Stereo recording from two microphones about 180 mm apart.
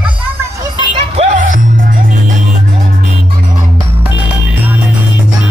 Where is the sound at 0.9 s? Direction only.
35° right (ahead or behind).